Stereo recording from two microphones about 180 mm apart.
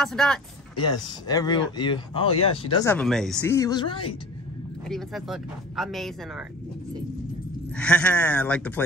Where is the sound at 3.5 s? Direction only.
20° left (ahead or behind).